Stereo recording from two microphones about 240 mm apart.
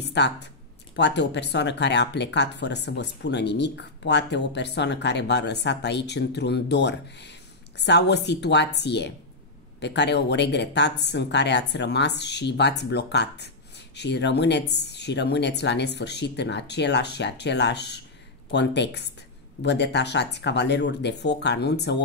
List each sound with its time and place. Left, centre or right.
0.0 s speech: left